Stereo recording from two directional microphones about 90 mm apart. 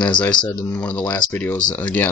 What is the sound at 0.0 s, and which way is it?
Speech, 10° left (ahead or behind).